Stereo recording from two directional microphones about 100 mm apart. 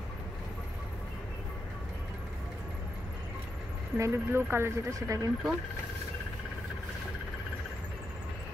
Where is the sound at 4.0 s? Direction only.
25° right (ahead or behind).